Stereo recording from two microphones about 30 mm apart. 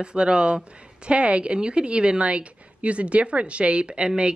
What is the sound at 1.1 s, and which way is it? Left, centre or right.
Speech, right.